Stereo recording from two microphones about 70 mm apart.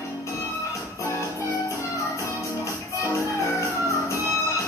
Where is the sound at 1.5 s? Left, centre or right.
Left.